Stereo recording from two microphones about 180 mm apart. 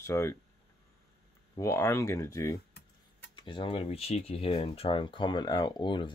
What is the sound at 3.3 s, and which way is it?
Speech, 25° left (ahead or behind).